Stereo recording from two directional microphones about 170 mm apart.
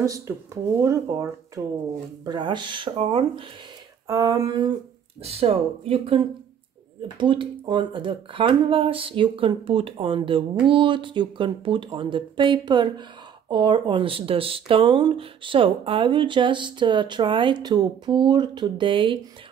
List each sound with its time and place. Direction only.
0.3 s speech: 15° right (ahead or behind)
4.1 s speech: 20° right (ahead or behind)
5.2 s speech: 35° right (ahead or behind)